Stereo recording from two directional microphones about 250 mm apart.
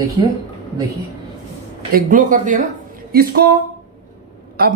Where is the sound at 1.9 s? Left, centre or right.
Right.